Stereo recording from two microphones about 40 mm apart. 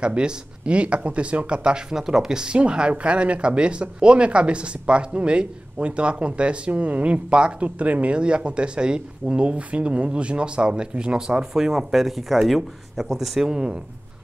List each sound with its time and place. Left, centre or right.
0.0 s speech: right
6.7 s speech: right
7.6 s speech: right
9.3 s speech: right; by 13.6 s centre